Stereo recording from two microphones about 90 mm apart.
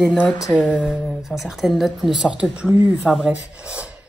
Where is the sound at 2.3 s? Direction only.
15° right (ahead or behind).